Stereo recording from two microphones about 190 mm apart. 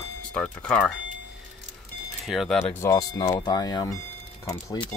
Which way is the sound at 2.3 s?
Centre (ahead or behind).